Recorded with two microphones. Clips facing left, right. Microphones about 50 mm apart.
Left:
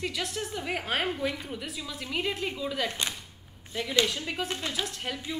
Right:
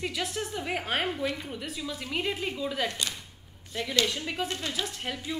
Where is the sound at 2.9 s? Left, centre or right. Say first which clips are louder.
Left 1 dB; left.